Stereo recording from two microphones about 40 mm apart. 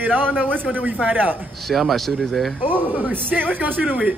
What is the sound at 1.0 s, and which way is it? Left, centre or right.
Speech, right.